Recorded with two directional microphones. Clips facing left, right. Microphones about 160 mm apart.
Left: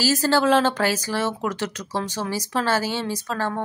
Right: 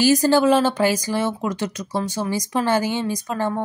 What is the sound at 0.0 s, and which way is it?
A woman's voice, 15° right (ahead or behind).